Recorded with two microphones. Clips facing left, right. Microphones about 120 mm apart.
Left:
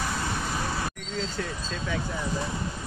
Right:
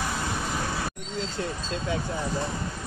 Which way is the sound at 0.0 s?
5° right (ahead or behind).